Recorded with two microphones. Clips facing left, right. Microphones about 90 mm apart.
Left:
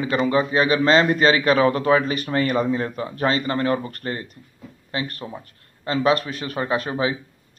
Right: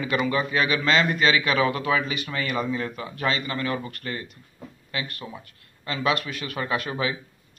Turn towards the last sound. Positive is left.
turn(degrees=35)  # may be behind; listen again after turning